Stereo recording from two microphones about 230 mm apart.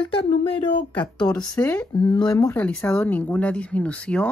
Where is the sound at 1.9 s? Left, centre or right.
Centre.